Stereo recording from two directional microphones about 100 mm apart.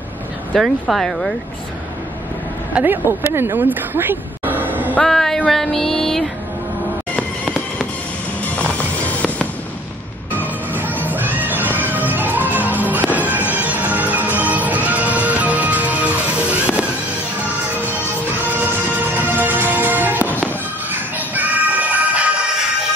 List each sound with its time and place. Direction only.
0.6 s a sound: centre (ahead or behind)
2.7 s speech: 20° right (ahead or behind)
5.0 s a sound: 5° left (ahead or behind)
7.2 s fireworks: 5° left (ahead or behind)
8.5 s music: 15° left (ahead or behind)
11.1 s music: 20° right (ahead or behind)
13.1 s fireworks: 15° right (ahead or behind)
14.4 s music: 15° right (ahead or behind)
18.4 s music: 15° right (ahead or behind)